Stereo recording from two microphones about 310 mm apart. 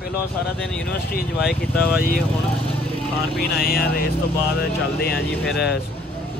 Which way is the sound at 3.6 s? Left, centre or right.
Left.